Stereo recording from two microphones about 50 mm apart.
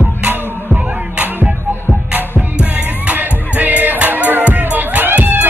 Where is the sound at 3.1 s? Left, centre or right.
Right.